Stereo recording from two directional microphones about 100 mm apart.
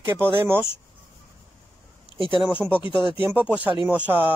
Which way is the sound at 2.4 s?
10° right (ahead or behind).